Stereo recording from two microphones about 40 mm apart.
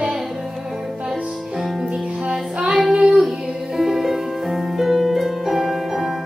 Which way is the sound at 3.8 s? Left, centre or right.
Centre.